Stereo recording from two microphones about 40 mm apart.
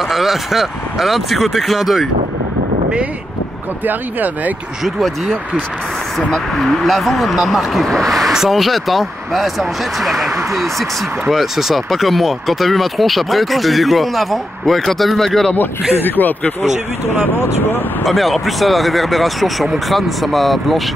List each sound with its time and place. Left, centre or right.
0.1 s speech: centre
3.8 s speech: right
6.1 s speech: centre
15.5 s speech: left
18.0 s speech: centre